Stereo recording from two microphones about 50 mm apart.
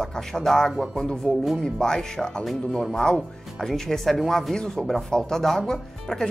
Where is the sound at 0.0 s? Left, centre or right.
Centre.